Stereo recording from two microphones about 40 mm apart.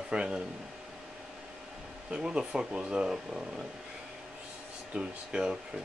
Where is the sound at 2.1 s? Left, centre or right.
Right.